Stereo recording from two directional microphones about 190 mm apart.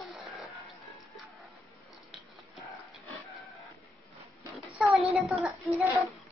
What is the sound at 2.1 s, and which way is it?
Sniff, centre (ahead or behind).